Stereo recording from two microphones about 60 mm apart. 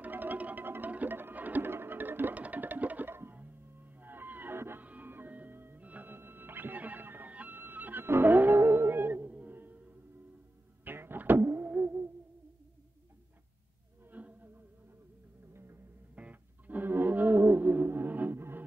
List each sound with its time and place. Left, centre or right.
0.0 s music: right
4.0 s whale vocalization: right
4.8 s music: right
5.8 s music: right
10.8 s a sound: right
11.7 s music: right
14.1 s a sound: right
15.5 s music: right
16.2 s music: right